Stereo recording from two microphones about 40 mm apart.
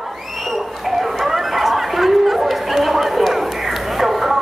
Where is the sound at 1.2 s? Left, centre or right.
Centre.